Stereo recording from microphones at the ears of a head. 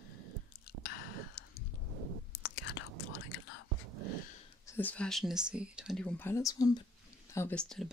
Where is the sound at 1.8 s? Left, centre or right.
Right.